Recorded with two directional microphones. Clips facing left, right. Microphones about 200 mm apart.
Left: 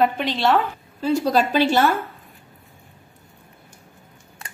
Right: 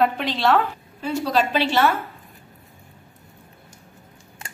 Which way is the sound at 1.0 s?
40° left (ahead or behind).